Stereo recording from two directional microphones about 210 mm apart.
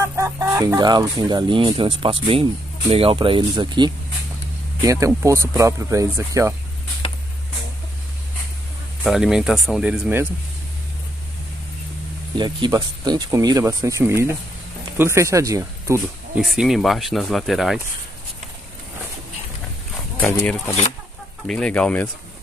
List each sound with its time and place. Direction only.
0.0 s speech: 15° right (ahead or behind)
5.0 s speech: 15° right (ahead or behind)
9.0 s speech: centre (ahead or behind)
12.4 s speech: 20° right (ahead or behind)
16.3 s speech: centre (ahead or behind)
20.2 s speech: 10° left (ahead or behind)